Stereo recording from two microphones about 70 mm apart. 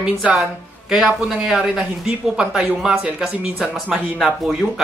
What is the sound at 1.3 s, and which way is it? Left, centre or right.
Speech, centre.